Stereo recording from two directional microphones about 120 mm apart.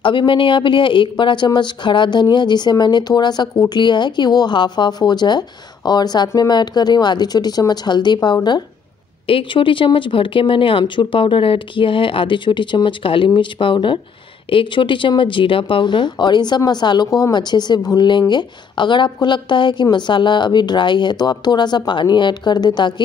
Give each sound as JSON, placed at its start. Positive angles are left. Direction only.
{"t": 0.0, "sound": "speech", "side_deg": 45}